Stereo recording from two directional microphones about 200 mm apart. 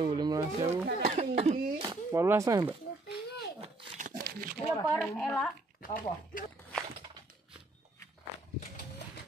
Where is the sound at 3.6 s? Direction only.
35° right (ahead or behind).